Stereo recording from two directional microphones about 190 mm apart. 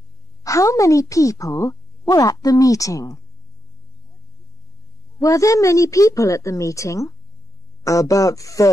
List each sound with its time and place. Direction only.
0.4 s speech: 15° left (ahead or behind)
5.2 s speech: 15° left (ahead or behind)